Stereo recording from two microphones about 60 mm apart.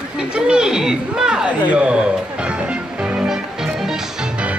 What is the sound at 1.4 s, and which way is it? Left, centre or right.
Speech, right.